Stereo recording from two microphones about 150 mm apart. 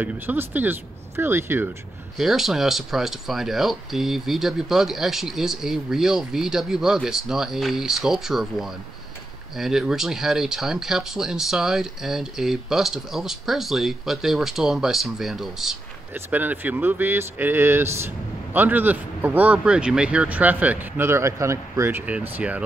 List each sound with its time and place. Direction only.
0.0 s speech: 10° right (ahead or behind)
2.1 s speech: centre (ahead or behind)